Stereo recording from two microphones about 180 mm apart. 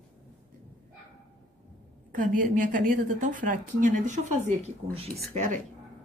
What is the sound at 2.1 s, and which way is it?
A woman's voice, 45° right (ahead or behind).